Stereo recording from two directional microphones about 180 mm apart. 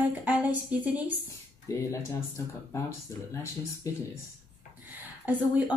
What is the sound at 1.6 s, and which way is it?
Speech, 15° left (ahead or behind).